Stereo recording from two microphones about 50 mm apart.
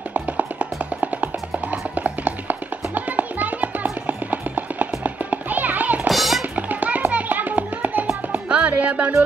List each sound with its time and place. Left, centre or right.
0.1 s music: right
6.0 s music: centre
6.5 s music: right